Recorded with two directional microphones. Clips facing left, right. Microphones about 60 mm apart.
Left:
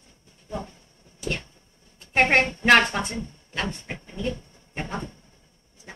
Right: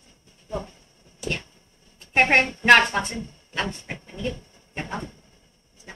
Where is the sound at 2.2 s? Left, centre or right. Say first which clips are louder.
Right 1 dB; centre.